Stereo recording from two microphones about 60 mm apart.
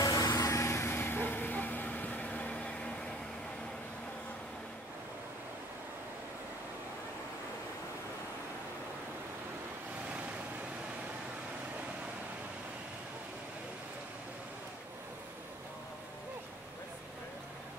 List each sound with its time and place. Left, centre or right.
0.0 s vehicle: left
0.8 s vehicle: left; by 2.9 s centre